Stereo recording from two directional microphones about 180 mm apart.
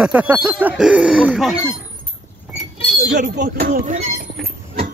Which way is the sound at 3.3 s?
65° right (ahead or behind).